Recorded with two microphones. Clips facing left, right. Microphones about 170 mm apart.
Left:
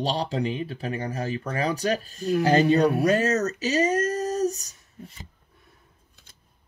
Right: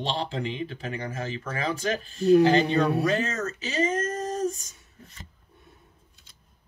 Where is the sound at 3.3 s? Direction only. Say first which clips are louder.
Left 7 dB; 40° left (ahead or behind).